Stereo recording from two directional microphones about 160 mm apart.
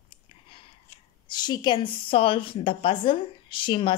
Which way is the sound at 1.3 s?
25° left (ahead or behind).